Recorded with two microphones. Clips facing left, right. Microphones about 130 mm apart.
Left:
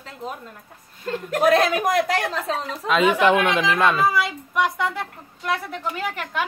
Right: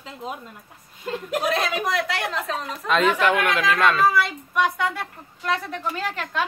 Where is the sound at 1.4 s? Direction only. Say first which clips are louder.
Left 8 dB; 55° left (ahead or behind); by 2.7 s 35° left (ahead or behind).